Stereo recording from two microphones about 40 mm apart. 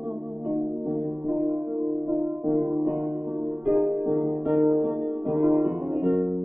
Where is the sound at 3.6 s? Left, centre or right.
Right.